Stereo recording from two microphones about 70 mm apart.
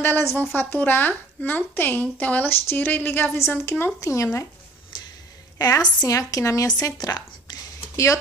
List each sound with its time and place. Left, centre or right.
0.0 s a woman's voice: left
4.0 s speech: left
5.6 s a woman's voice: left
6.0 s a woman's voice: left
7.9 s speech: left